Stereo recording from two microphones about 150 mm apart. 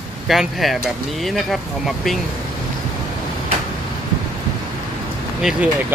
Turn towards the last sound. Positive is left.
turn(degrees=-5)  # may be behind; listen again after turning